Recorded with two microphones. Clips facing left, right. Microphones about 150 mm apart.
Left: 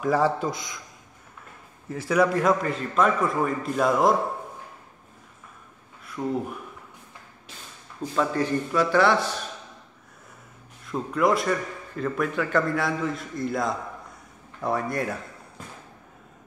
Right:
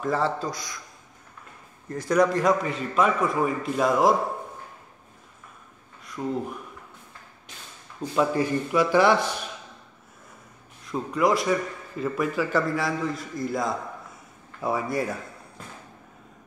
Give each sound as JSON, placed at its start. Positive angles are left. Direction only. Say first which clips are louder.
{"t": 0.0, "sound": "a man's voice", "louder": "left 3 dB", "side_deg": 10}
{"t": 1.9, "sound": "a man's voice", "louder": "right 1 dB", "side_deg": 5}
{"t": 6.2, "sound": "a man's voice", "louder": "left 1 dB", "side_deg": 5}
{"t": 8.1, "sound": "a man's voice", "louder": "right 1 dB", "side_deg": -10}
{"t": 10.9, "sound": "a man's voice", "louder": "even", "side_deg": 0}